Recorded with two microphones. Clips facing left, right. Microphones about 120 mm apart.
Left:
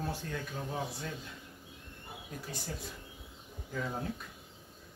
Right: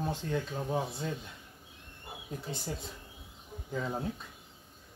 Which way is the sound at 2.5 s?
25° right (ahead or behind).